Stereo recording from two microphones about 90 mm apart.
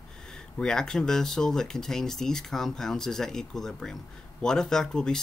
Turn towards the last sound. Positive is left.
turn(degrees=5)  # may be behind; listen again after turning